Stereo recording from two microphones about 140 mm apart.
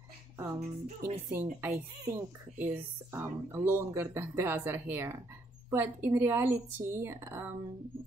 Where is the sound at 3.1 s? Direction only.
20° right (ahead or behind).